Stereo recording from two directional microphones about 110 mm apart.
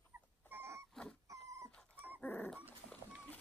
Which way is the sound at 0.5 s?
20° right (ahead or behind).